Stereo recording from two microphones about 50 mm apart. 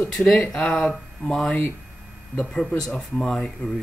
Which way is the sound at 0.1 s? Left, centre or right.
Centre.